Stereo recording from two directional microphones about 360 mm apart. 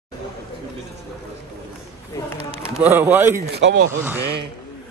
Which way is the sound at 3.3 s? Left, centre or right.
Right.